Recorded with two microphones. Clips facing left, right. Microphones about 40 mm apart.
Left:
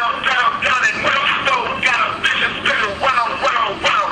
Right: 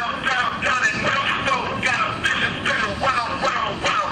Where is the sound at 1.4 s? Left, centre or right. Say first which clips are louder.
Left 5 dB; left.